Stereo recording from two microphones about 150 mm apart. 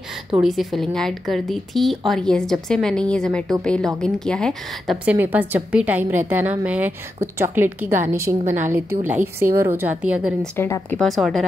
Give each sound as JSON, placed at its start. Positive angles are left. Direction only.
{"t": 0.3, "sound": "a woman's voice", "side_deg": 0}
{"t": 5.0, "sound": "a woman's voice", "side_deg": -10}
{"t": 10.4, "sound": "a woman's voice", "side_deg": 10}
{"t": 11.0, "sound": "a woman's voice", "side_deg": 0}